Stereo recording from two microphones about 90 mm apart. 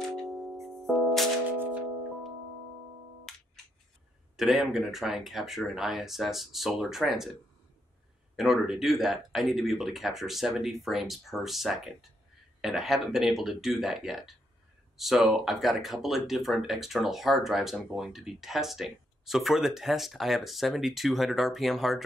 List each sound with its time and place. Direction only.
0.6 s music: centre (ahead or behind)
3.3 s music: 5° left (ahead or behind)
4.4 s speech: 5° right (ahead or behind)
8.4 s speech: 5° right (ahead or behind)